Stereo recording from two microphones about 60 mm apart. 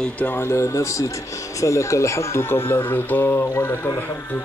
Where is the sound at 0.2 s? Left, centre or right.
Left.